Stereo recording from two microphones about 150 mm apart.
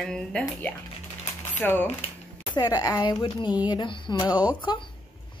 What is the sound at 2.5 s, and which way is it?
Speech, 25° left (ahead or behind).